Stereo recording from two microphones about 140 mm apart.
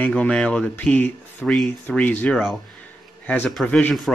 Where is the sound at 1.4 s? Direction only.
Centre (ahead or behind).